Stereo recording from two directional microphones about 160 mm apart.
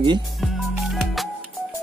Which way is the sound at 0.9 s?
Centre (ahead or behind).